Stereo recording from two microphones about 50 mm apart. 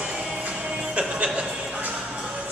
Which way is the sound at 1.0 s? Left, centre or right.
Right.